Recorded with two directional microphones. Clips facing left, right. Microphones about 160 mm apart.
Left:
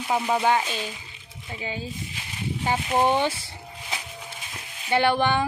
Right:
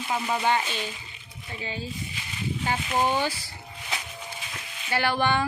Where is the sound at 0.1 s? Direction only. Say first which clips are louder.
Left 3 dB; 10° left (ahead or behind).